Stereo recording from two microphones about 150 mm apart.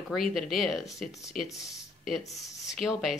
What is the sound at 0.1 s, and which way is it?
Speech, centre (ahead or behind).